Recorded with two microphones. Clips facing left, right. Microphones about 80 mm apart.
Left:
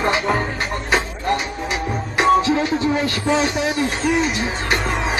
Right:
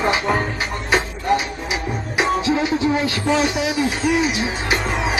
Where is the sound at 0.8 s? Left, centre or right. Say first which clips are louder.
Right 2 dB; centre.